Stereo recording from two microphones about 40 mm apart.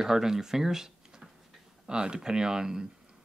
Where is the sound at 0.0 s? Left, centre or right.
Centre.